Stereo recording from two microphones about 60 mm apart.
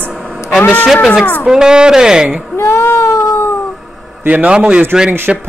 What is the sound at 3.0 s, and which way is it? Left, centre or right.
Cat, left.